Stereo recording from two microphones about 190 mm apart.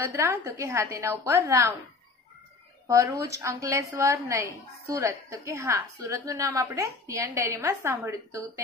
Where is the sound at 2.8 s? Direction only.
15° right (ahead or behind).